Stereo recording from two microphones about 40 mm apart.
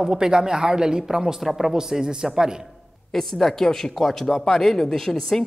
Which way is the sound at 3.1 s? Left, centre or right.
Centre.